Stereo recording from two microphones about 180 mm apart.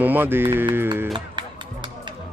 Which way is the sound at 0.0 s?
10° right (ahead or behind).